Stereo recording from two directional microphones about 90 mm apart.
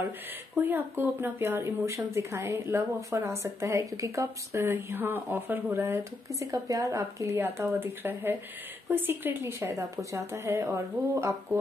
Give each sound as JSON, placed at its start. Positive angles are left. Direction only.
{"t": 0.6, "sound": "speech", "side_deg": -20}
{"t": 6.4, "sound": "a woman's voice", "side_deg": -40}
{"t": 7.3, "sound": "speech", "side_deg": -25}